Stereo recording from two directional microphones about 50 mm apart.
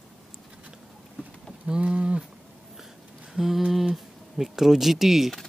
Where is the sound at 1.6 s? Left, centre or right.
Centre.